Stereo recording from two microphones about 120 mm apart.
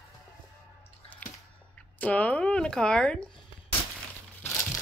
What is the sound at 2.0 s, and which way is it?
Speech, 10° left (ahead or behind).